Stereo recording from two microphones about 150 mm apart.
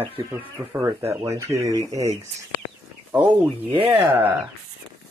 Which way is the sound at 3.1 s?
10° right (ahead or behind).